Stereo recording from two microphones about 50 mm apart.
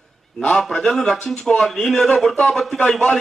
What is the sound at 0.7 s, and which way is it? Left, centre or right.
A man's voice, centre.